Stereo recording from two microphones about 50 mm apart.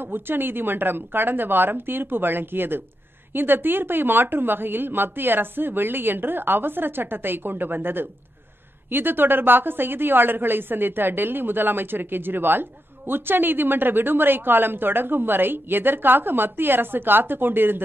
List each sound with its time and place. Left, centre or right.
0.0 s a woman's voice: right